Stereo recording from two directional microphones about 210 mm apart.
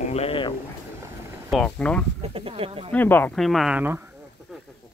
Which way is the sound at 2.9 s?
10° left (ahead or behind).